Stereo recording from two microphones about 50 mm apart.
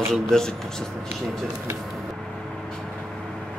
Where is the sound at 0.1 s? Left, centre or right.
Centre.